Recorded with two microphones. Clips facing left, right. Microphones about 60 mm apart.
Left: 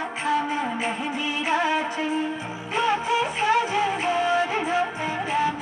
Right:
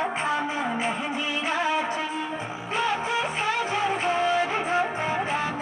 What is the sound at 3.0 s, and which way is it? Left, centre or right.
Music, right.